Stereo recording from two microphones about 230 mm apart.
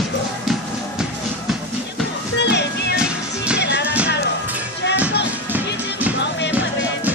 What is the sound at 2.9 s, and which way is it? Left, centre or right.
Music, centre.